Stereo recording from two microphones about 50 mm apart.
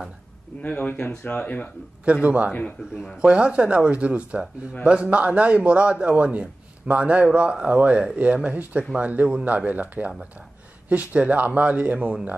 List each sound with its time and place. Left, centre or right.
0.6 s speech: left
2.2 s a man's voice: right